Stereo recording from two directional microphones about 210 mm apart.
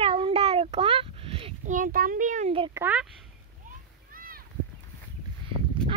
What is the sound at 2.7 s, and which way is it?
Speech, 10° right (ahead or behind).